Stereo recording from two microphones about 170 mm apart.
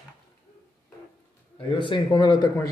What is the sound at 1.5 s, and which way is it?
Speech, 30° left (ahead or behind).